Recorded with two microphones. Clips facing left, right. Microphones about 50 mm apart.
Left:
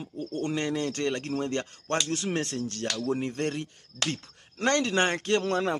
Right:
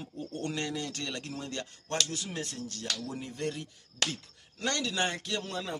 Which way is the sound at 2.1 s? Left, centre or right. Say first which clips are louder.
Left 8 dB; left.